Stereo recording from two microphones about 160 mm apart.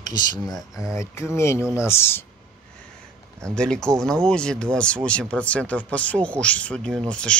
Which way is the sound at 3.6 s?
5° left (ahead or behind).